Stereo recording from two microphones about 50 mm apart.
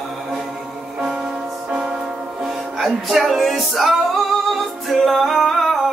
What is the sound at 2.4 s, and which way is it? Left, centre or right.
Music, centre.